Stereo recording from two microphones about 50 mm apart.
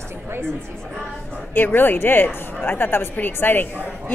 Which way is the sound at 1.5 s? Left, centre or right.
Left.